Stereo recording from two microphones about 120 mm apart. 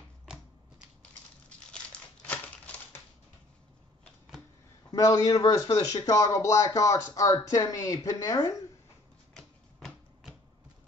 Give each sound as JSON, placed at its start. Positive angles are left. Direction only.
{"t": 1.7, "sound": "crumpling", "side_deg": 10}
{"t": 4.9, "sound": "a man's voice", "side_deg": 30}
{"t": 9.3, "sound": "typewriter", "side_deg": 5}